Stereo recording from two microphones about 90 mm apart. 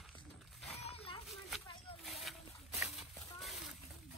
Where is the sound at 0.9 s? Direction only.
90° left.